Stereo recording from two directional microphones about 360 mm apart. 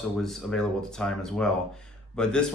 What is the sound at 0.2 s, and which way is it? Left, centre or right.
Speech, centre.